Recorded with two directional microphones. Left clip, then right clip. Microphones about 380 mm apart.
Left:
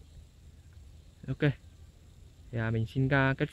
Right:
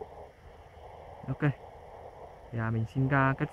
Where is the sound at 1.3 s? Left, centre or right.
Right.